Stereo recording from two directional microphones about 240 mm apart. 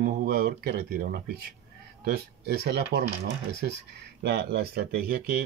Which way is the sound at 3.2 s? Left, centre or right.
Right.